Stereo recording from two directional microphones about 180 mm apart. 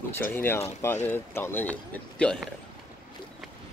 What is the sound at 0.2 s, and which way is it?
Speech, 10° left (ahead or behind).